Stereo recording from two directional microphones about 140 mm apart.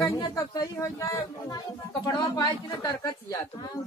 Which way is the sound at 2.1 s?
25° left (ahead or behind).